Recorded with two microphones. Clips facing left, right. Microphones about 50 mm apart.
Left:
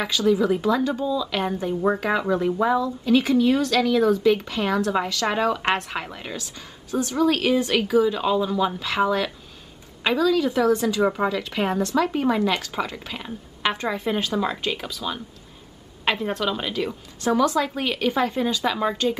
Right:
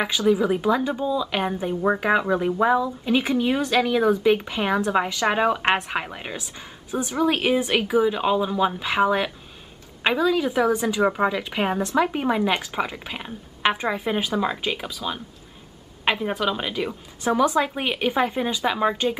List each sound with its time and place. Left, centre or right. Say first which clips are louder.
0.3 s a woman's voice: even; centre